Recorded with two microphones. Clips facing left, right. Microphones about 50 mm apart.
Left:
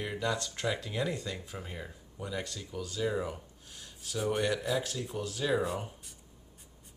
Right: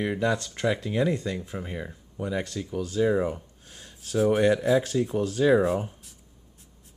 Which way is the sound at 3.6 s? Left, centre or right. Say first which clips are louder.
Right 2 dB; right.